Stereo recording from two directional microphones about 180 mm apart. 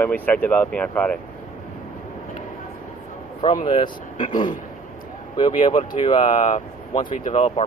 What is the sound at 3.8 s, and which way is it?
Speech, 45° left (ahead or behind).